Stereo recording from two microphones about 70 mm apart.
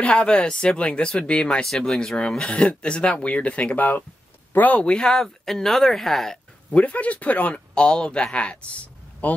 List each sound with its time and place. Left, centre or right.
0.0 s speech: centre
6.7 s speech: left